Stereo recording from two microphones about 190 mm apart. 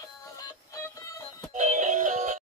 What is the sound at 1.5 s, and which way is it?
Music, 40° right (ahead or behind).